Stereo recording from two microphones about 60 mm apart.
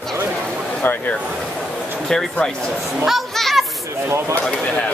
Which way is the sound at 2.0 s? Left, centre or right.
Centre.